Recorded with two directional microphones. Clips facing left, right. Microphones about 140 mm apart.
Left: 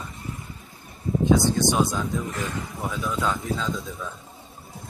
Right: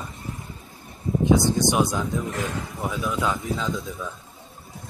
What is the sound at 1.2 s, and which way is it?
Speech, 15° right (ahead or behind).